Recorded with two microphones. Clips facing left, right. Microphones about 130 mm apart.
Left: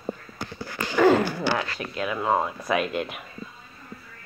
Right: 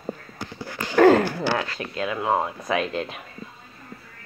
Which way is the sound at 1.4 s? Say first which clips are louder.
Right 1 dB; 25° right (ahead or behind).